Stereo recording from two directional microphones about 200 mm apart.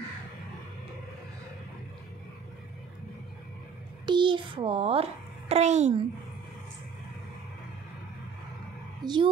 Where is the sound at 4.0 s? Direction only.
25° right (ahead or behind).